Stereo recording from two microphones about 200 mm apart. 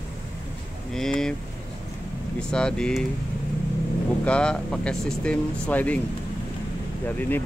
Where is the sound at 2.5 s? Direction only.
5° left (ahead or behind).